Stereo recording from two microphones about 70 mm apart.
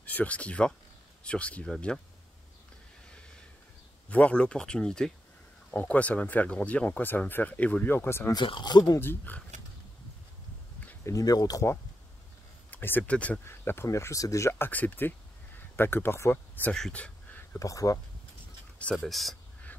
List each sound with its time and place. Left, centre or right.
0.0 s speech: left
4.1 s speech: centre
7.9 s speech: left
8.3 s speech: left
9.0 s speech: left
11.1 s speech: left
12.7 s speech: left
13.5 s speech: left
13.8 s speech: left
14.7 s speech: left
16.6 s speech: left
16.9 s a sound: centre
17.6 s speech: left
19.0 s speech: centre